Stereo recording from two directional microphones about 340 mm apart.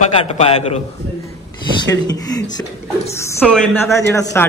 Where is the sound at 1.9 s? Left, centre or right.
Centre.